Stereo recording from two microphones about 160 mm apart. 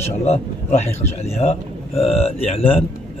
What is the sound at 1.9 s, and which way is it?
Speech, 40° left (ahead or behind).